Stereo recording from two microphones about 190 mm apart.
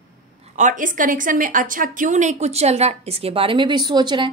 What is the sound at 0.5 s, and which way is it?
Speech, 40° right (ahead or behind).